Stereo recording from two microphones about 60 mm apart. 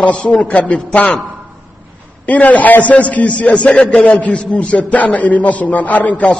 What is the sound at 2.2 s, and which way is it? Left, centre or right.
A man's voice, left.